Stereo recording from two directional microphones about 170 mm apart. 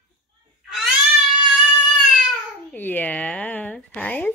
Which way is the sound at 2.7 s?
10° left (ahead or behind).